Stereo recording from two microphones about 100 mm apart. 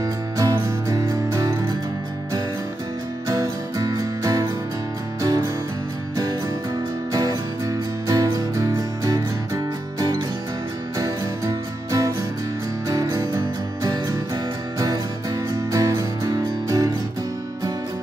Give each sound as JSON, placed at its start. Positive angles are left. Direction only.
{"t": 0.0, "sound": "music", "side_deg": -40}
{"t": 3.3, "sound": "music", "side_deg": -35}
{"t": 7.1, "sound": "music", "side_deg": -40}